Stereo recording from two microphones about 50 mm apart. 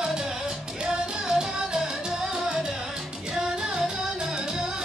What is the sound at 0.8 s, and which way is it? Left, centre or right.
Music, centre.